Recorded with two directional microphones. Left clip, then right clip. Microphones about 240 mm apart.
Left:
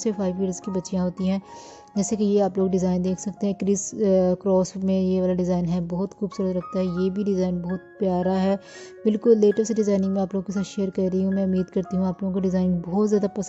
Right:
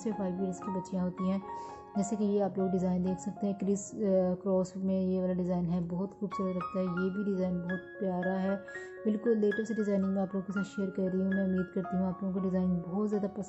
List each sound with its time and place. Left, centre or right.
0.0 s a woman's voice: left